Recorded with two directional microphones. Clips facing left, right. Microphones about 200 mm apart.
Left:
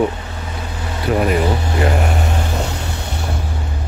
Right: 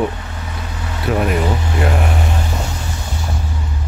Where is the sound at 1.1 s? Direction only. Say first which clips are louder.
Left 1 dB; centre (ahead or behind).